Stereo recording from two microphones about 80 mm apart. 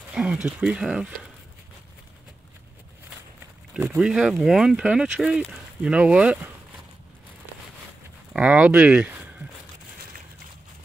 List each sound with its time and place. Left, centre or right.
0.1 s speech: centre
4.0 s speech: centre
8.3 s speech: centre